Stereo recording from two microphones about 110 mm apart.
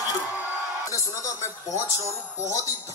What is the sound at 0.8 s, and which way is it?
Music, 30° left (ahead or behind).